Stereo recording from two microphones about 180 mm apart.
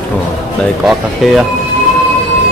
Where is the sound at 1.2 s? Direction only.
Centre (ahead or behind).